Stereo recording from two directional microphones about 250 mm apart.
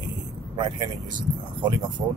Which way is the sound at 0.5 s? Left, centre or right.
Centre.